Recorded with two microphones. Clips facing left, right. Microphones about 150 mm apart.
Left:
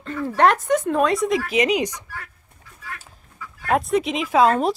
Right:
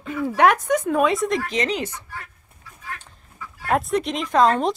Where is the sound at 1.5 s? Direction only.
10° left (ahead or behind).